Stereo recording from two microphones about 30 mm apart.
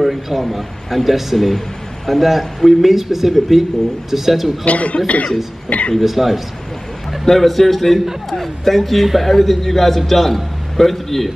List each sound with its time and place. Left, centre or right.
0.0 s a man's voice: centre
4.6 s speech: left
5.9 s a man's voice: centre